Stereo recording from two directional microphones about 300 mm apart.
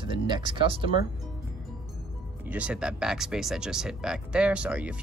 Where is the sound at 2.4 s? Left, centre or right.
Centre.